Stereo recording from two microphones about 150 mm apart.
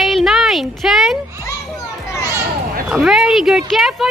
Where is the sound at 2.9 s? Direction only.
5° right (ahead or behind).